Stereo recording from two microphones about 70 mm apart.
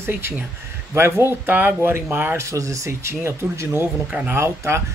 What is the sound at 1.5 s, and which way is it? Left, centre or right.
Speech, right.